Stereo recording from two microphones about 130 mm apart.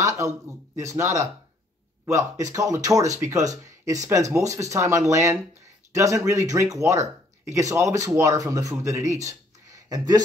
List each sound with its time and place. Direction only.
0.0 s speech: 25° right (ahead or behind)